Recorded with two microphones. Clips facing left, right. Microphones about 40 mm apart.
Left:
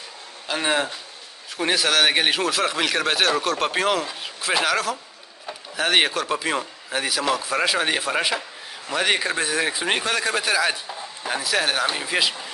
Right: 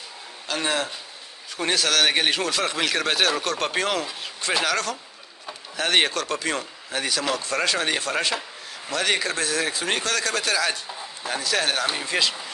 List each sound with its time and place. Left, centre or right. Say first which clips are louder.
0.5 s a man's voice: left 3 dB; centre